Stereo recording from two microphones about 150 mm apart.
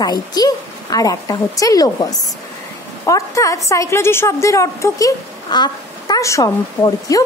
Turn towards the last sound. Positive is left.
turn(degrees=25)  # may be behind; listen again after turning